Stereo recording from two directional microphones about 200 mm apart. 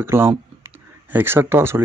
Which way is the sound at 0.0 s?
10° right (ahead or behind).